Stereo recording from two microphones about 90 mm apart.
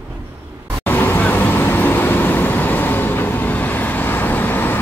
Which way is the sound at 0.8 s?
25° left (ahead or behind).